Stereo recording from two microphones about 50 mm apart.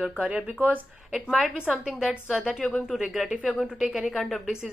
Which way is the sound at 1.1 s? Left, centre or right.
Centre.